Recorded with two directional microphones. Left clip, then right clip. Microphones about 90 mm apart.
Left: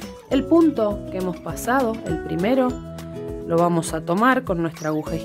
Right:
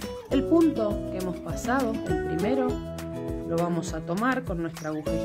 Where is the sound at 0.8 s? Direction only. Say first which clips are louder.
Left 6 dB; 30° left (ahead or behind).